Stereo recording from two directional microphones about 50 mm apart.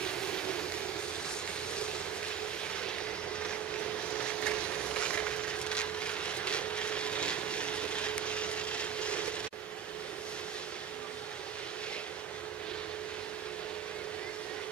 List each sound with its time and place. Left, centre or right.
0.0 s vehicle: centre
4.1 s wood: left